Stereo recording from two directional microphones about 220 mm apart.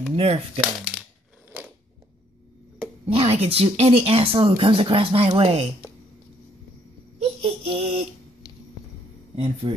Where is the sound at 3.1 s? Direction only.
25° right (ahead or behind).